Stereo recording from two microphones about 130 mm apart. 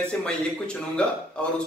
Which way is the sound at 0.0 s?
10° left (ahead or behind).